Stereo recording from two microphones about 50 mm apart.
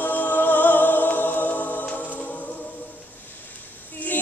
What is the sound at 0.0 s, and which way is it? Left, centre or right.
Music, left.